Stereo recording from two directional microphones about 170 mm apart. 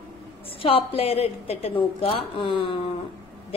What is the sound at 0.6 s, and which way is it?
A woman's voice, 35° left (ahead or behind).